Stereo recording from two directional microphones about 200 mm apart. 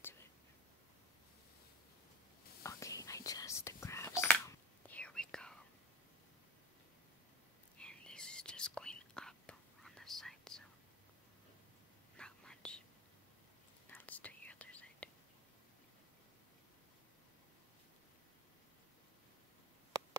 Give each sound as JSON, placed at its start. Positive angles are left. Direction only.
{"t": 2.6, "sound": "whispering", "side_deg": 15}
{"t": 7.8, "sound": "whispering", "side_deg": 5}
{"t": 12.2, "sound": "whispering", "side_deg": 5}
{"t": 13.8, "sound": "whispering", "side_deg": 10}